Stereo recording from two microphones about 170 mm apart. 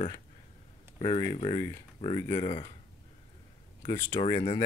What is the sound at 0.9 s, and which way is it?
Speech, 30° left (ahead or behind).